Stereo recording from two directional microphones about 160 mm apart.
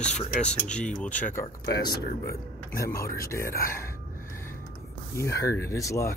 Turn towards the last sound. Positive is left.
turn(degrees=20)  # may be behind; listen again after turning